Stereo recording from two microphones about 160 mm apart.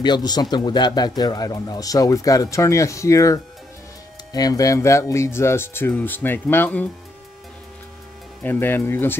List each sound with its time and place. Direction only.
0.0 s speech: 25° left (ahead or behind); by 6.9 s 10° left (ahead or behind)
8.4 s speech: 10° left (ahead or behind)